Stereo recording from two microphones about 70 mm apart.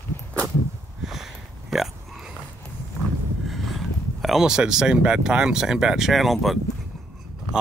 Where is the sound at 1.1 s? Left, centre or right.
Centre.